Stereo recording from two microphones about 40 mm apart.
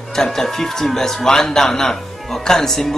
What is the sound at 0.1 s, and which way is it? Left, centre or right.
A man's voice, centre.